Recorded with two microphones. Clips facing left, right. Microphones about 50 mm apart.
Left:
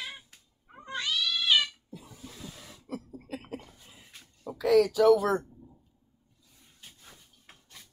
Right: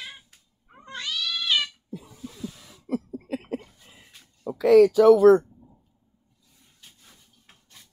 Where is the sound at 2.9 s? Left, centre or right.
Right.